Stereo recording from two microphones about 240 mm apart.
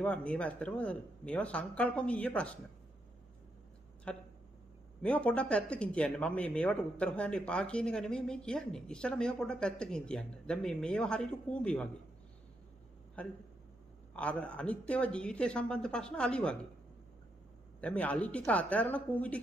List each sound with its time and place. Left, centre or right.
0.0 s speech: centre
4.1 s speech: centre
14.1 s speech: centre
17.7 s speech: centre